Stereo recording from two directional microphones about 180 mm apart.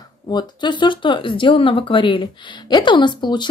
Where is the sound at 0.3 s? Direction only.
25° left (ahead or behind).